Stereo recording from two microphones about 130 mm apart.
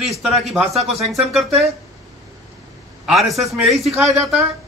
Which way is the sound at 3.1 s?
Centre (ahead or behind).